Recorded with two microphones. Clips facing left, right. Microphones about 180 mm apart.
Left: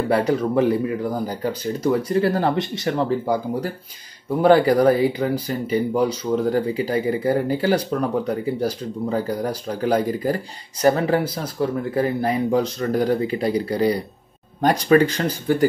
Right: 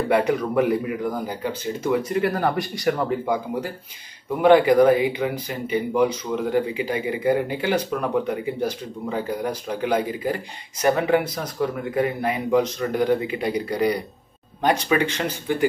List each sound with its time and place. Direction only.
0.1 s speech: 30° left (ahead or behind)